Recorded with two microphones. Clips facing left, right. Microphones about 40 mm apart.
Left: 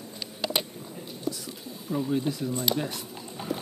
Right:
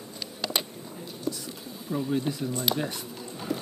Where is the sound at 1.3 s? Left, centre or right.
Centre.